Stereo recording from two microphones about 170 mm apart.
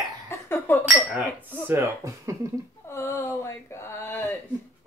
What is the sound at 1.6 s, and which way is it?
Speech, 15° right (ahead or behind).